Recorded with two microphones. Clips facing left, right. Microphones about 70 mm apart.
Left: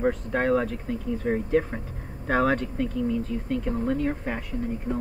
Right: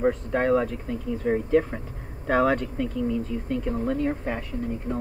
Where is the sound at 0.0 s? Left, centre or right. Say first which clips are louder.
Right 1 dB; centre.